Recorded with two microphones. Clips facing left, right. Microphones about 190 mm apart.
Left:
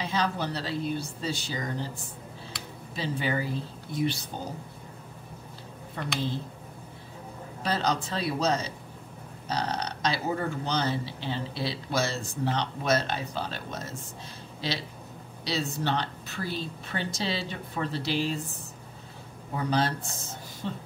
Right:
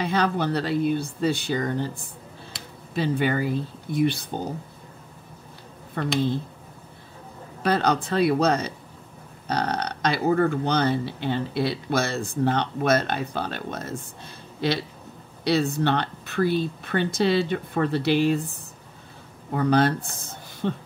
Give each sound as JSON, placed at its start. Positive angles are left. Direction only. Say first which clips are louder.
{"t": 0.0, "sound": "speech", "louder": "right 6 dB", "side_deg": -60}
{"t": 2.9, "sound": "speech", "louder": "right 7 dB", "side_deg": -60}
{"t": 6.0, "sound": "speech", "louder": "right 8 dB", "side_deg": -55}
{"t": 7.6, "sound": "speech", "louder": "right 6 dB", "side_deg": -60}
{"t": 19.5, "sound": "speech", "louder": "right 7 dB", "side_deg": -55}